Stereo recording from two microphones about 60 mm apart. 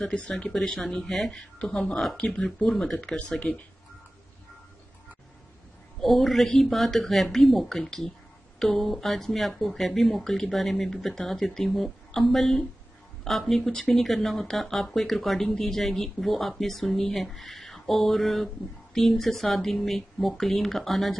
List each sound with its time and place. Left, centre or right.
0.0 s speech: centre
0.6 s speech: centre
2.7 s speech: centre
3.2 s speech: centre
5.9 s a woman's voice: centre